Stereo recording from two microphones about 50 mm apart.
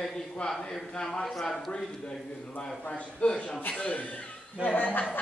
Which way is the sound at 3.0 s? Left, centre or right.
Left.